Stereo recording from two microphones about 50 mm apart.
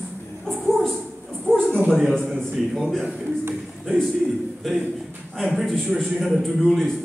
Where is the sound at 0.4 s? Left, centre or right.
Centre.